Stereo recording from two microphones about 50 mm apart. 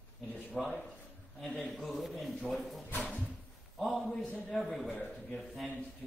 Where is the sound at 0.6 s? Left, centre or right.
Centre.